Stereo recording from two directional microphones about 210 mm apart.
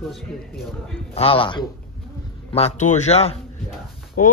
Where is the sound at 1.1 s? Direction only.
25° left (ahead or behind).